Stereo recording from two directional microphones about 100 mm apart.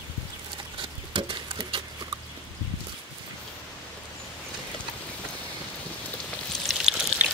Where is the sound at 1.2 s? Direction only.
60° right (ahead or behind).